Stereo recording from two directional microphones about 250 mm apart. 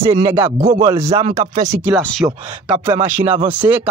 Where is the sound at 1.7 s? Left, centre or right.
Centre.